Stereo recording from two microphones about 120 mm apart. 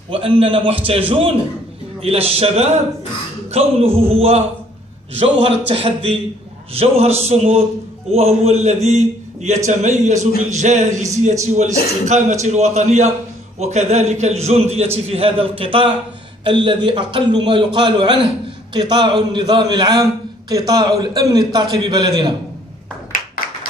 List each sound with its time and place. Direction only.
0.1 s a man's voice: 50° right (ahead or behind)